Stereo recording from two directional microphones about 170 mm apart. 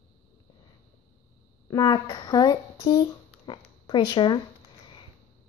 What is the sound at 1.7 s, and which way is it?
Speech, 20° left (ahead or behind).